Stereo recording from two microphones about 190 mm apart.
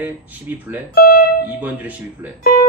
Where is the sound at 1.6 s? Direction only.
10° right (ahead or behind).